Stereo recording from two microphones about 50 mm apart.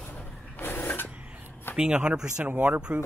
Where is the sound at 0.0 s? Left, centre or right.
Left.